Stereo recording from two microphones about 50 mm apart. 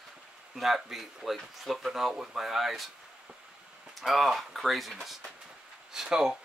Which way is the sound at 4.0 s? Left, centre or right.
Centre.